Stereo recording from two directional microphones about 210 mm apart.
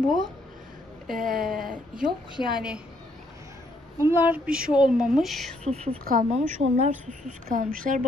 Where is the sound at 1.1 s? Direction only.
40° right (ahead or behind).